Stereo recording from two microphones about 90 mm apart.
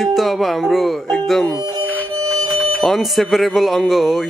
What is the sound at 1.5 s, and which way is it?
Music, 50° right (ahead or behind).